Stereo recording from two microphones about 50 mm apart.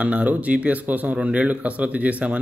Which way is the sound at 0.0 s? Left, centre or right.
Right.